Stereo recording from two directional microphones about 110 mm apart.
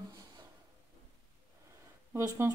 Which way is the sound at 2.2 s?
35° right (ahead or behind).